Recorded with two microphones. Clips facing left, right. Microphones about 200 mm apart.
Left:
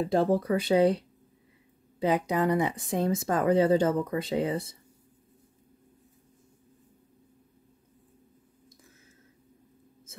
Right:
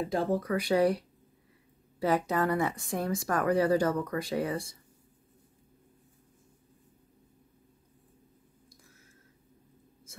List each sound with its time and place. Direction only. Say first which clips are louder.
0.1 s speech: left 5 dB; 35° left (ahead or behind)